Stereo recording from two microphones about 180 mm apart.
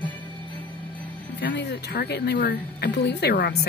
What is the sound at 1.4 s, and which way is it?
Speech, 75° left (ahead or behind).